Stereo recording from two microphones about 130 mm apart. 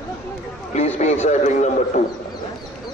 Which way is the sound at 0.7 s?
60° left (ahead or behind).